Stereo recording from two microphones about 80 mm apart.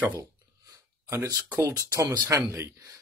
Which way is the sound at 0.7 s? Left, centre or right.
Right.